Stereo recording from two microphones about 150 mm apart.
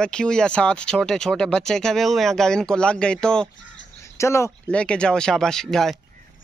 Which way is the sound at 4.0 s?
20° left (ahead or behind).